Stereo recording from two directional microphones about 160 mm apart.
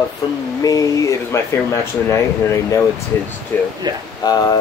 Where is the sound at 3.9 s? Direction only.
25° right (ahead or behind).